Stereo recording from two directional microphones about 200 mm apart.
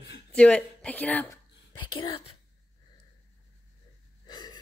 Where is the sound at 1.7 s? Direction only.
20° left (ahead or behind).